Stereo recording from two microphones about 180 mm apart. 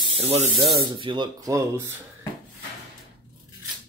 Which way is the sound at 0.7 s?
30° right (ahead or behind).